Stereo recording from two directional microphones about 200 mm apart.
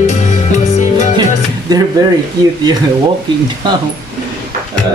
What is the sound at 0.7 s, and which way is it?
Music, 35° left (ahead or behind).